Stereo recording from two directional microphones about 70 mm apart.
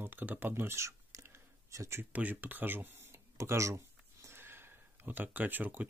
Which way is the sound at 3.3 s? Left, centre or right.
Right.